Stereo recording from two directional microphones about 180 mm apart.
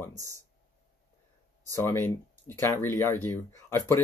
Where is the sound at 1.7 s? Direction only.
15° left (ahead or behind).